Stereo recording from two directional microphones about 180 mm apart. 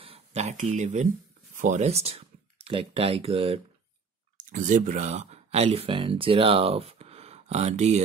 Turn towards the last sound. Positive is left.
turn(degrees=-35)  # may be behind; listen again after turning